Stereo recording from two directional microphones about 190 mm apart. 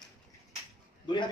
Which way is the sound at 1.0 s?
25° left (ahead or behind).